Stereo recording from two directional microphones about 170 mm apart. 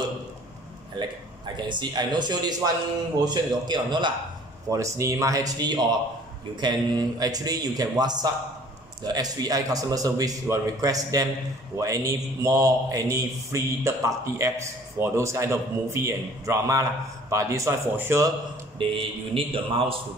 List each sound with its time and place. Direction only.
0.9 s a man's voice: 25° right (ahead or behind)
18.8 s a man's voice: 30° right (ahead or behind)